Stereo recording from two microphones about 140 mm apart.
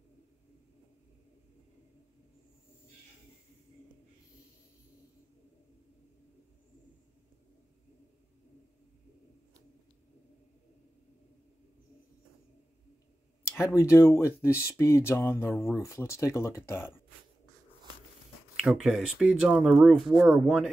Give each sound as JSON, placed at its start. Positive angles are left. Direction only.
{"t": 13.4, "sound": "speech", "side_deg": 20}
{"t": 18.6, "sound": "speech", "side_deg": 0}